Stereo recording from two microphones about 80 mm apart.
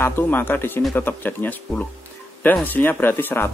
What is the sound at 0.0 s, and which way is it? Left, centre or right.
Speech, left.